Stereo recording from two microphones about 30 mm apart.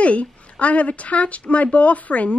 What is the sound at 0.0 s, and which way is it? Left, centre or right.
A woman's voice, left.